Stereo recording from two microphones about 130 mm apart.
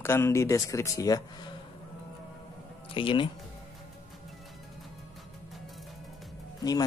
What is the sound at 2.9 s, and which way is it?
Speech, 40° left (ahead or behind).